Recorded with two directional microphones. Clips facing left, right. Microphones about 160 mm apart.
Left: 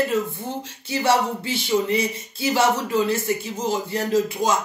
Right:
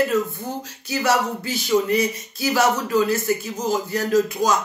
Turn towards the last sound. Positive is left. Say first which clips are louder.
# right 2 dB
turn(degrees=25)  # may be behind; listen again after turning